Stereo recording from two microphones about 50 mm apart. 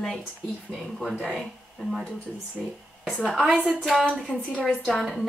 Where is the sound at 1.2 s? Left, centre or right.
Centre.